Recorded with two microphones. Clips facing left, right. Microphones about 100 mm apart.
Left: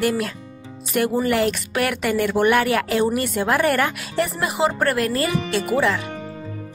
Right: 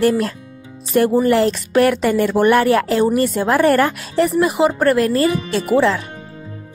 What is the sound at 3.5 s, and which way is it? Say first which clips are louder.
Speech: right 7 dB; 20° right (ahead or behind).